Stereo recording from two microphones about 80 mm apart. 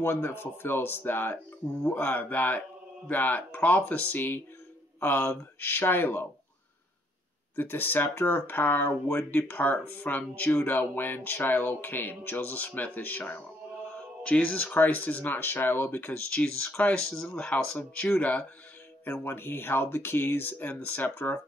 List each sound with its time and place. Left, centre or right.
0.0 s speech: left
7.5 s speech: left
19.0 s speech: left